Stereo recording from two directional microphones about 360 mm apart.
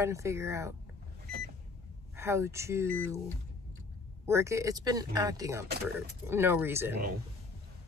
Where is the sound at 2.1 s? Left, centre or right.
Centre.